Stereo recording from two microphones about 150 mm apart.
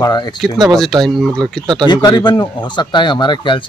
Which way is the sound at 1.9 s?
30° left (ahead or behind).